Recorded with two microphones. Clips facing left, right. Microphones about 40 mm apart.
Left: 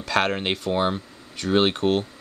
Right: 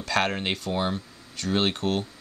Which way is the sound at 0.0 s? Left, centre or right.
Centre.